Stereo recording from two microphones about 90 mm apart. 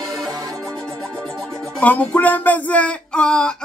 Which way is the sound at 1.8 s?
20° left (ahead or behind).